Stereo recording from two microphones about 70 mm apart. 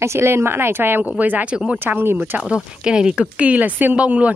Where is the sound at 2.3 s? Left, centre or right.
Centre.